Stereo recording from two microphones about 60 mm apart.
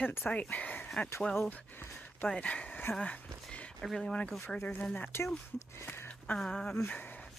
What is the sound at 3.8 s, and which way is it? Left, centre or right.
Speech, centre.